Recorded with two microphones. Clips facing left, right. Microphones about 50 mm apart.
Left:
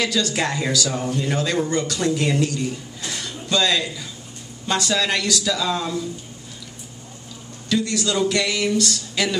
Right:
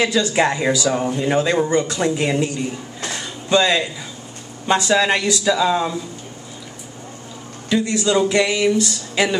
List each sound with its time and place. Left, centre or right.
0.0 s speech: right
3.2 s a sound: right
4.6 s speech: right
7.7 s speech: right